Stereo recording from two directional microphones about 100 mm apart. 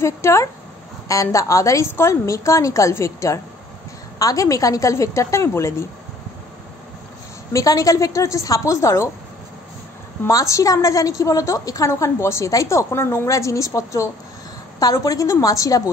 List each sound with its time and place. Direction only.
0.0 s a woman's voice: 25° left (ahead or behind)
7.5 s a woman's voice: 35° left (ahead or behind)
10.2 s a woman's voice: 30° left (ahead or behind)